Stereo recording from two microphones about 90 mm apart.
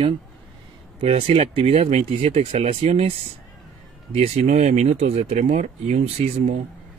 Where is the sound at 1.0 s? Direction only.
90° right.